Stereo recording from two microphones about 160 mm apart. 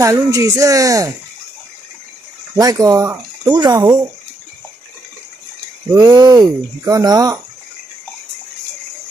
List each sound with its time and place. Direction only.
0.0 s speech: 20° right (ahead or behind)
2.5 s speech: 20° right (ahead or behind)
5.9 s speech: 25° right (ahead or behind)